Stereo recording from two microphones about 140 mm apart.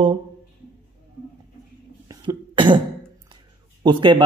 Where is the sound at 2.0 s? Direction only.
30° right (ahead or behind).